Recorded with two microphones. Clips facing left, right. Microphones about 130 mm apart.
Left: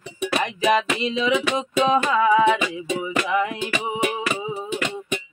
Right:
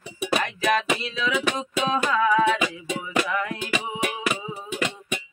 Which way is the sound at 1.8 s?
20° left (ahead or behind).